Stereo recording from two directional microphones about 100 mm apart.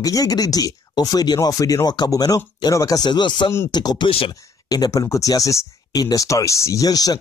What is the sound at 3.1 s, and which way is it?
Speech, 50° left (ahead or behind).